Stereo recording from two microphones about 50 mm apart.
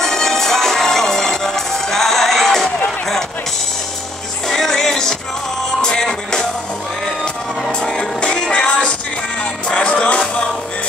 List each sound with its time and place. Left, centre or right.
0.0 s music: centre
4.5 s music: centre
7.6 s music: centre